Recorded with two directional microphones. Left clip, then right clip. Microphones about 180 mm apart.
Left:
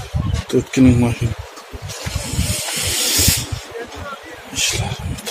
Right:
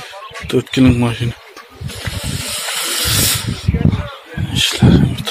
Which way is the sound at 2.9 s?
15° left (ahead or behind).